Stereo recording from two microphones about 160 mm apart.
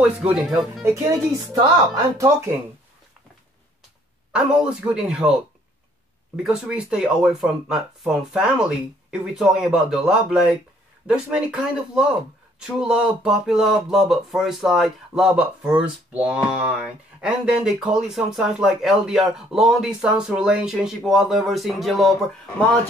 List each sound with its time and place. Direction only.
0.2 s speech: 5° right (ahead or behind)
0.9 s speech: 20° right (ahead or behind)
4.3 s speech: 5° right (ahead or behind)
6.3 s speech: 5° right (ahead or behind)